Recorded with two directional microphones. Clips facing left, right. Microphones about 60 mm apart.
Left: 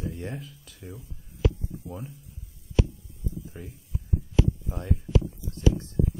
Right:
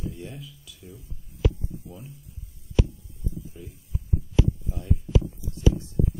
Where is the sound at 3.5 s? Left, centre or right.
Left.